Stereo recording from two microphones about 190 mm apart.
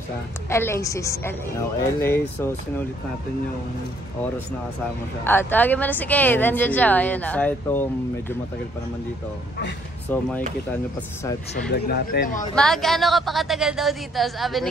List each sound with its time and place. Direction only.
0.5 s speech: 15° left (ahead or behind)
5.2 s speech: 10° left (ahead or behind)
11.7 s speech: 55° left (ahead or behind)
12.5 s a woman's voice: centre (ahead or behind)